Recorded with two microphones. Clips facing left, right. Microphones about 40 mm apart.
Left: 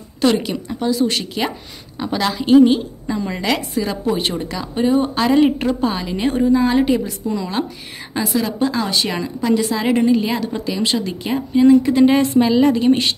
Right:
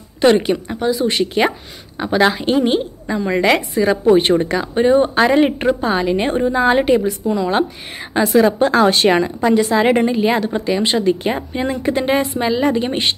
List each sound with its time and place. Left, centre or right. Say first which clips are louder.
0.2 s speech: right 4 dB; right
3.1 s speech: right 5 dB; centre
4.2 s speech: right 7 dB; right
7.2 s speech: right 5 dB; centre
8.2 s speech: right 6 dB; right
9.2 s speech: right 3 dB; right